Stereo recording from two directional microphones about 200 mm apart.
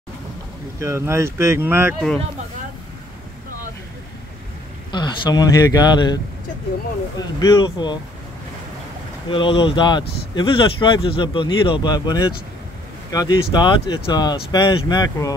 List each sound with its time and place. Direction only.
0.7 s speech: 15° right (ahead or behind)
4.9 s speech: 20° left (ahead or behind)
7.2 s speech: 20° left (ahead or behind)
9.3 s speech: 25° left (ahead or behind)